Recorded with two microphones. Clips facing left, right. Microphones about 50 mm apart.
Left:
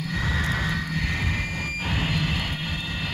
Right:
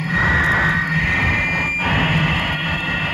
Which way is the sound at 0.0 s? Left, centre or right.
Right.